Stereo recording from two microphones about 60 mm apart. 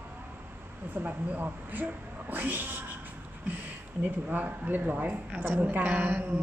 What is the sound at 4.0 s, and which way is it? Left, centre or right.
A woman's voice, right.